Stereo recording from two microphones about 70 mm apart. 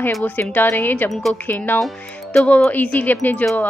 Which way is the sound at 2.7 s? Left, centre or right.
Left.